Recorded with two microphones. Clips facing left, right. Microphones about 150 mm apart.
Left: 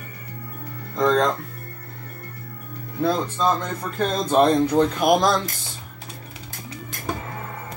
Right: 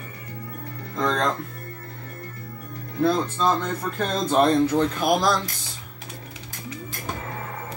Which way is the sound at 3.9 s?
10° left (ahead or behind).